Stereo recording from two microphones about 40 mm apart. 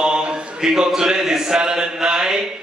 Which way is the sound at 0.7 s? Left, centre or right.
Centre.